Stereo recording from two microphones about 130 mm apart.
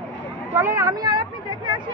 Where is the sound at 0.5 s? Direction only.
20° right (ahead or behind).